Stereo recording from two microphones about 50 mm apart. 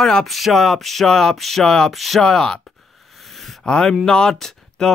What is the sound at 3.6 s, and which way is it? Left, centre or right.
Speech, centre.